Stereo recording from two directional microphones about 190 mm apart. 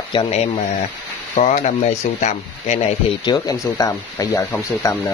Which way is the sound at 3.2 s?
20° left (ahead or behind).